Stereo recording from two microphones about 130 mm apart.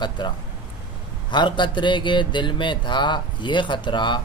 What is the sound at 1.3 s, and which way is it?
Speech, 35° left (ahead or behind).